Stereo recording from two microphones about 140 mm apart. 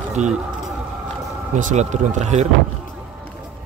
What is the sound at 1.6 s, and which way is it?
Speech, 65° right (ahead or behind).